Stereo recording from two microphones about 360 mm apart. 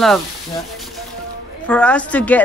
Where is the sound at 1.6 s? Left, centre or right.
Centre.